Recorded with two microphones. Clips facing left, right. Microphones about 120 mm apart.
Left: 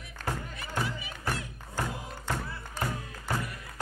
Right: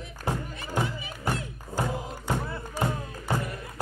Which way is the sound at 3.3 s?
20° right (ahead or behind).